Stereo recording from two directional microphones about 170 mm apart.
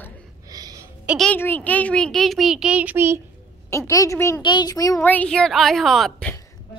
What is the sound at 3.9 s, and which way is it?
A child's voice, 20° left (ahead or behind).